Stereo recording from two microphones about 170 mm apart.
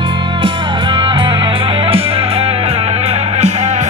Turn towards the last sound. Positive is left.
turn(degrees=-40)  # may be behind; listen again after turning